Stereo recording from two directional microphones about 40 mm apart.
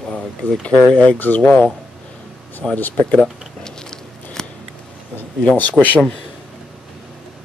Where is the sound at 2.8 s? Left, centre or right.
Left.